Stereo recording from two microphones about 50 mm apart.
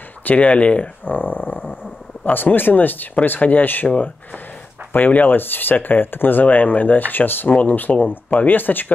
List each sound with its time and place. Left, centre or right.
0.2 s speech: left
1.0 s speech: left